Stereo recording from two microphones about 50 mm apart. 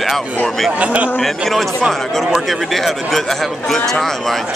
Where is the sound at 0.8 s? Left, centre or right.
Right.